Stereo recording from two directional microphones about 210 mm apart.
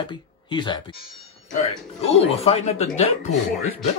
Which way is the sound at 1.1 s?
Centre (ahead or behind).